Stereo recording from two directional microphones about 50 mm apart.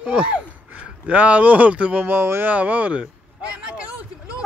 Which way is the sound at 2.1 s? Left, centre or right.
Right.